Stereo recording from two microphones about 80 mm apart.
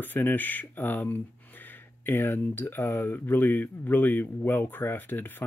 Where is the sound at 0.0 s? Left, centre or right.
Left.